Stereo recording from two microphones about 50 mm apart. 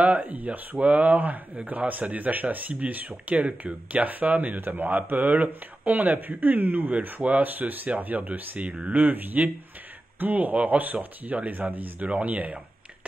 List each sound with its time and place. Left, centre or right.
0.0 s speech: right
8.5 s speech: right